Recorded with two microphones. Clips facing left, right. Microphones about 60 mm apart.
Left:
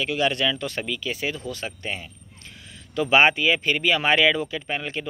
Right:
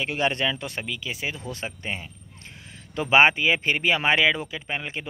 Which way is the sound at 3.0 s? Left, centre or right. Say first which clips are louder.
Even; right.